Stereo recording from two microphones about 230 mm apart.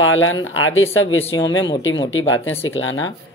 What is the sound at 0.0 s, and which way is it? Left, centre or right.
Speech, left.